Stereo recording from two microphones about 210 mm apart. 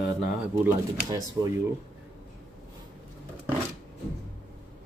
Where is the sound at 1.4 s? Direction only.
20° right (ahead or behind).